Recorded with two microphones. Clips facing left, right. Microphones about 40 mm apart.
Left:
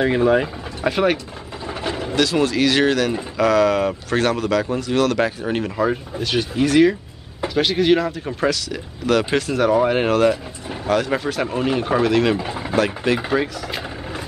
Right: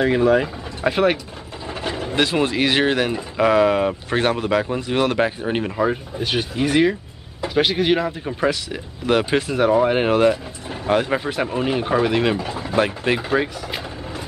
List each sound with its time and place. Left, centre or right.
0.0 s speech: centre
0.8 s speech: centre
1.9 s vehicle: centre
2.1 s speech: right
11.4 s speech: centre
12.4 s speech: centre
12.7 s speech: right
13.3 s speech: centre